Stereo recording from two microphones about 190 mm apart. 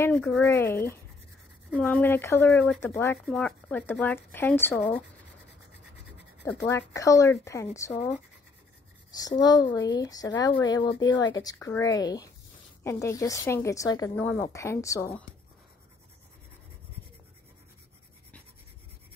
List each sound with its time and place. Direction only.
0.0 s speech: 5° left (ahead or behind)
3.3 s speech: 5° left (ahead or behind)
6.9 s speech: 15° left (ahead or behind)
9.4 s speech: 20° left (ahead or behind)
14.1 s speech: 5° left (ahead or behind)